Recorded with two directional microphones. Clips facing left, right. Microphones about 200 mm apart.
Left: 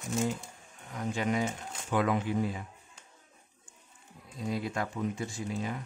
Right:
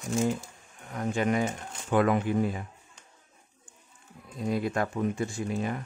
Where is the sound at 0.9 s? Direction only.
55° right (ahead or behind).